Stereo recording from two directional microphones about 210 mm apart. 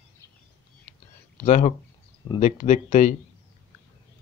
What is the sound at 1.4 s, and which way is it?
Speech, 30° left (ahead or behind).